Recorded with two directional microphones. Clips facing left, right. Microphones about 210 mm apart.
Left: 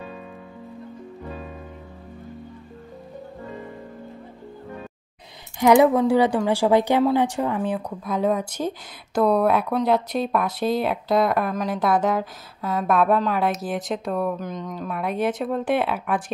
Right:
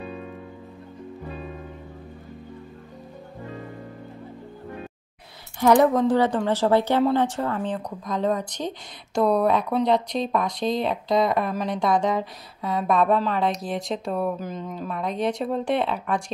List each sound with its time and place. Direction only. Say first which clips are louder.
5.6 s speech: left 2 dB; 10° left (ahead or behind)